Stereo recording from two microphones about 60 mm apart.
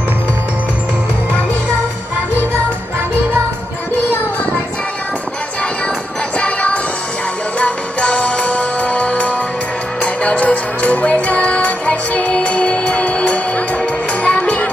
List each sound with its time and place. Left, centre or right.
3.9 s music: left
6.3 s music: left